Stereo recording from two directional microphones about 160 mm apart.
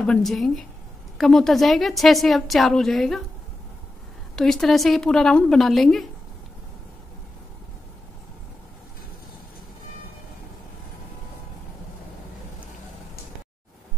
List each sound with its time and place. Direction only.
0.0 s a woman's voice: 5° left (ahead or behind)
4.4 s a woman's voice: 5° left (ahead or behind)